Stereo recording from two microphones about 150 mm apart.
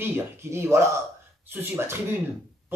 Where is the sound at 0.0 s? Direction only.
15° right (ahead or behind).